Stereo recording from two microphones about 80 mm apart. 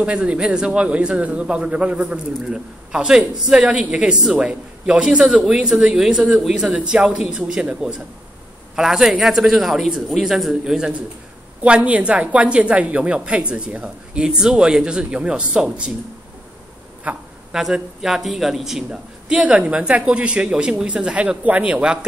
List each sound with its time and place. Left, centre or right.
0.0 s a man's voice: centre
17.0 s a man's voice: centre